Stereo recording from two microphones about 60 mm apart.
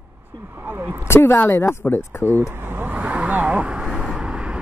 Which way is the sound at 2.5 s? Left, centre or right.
Right.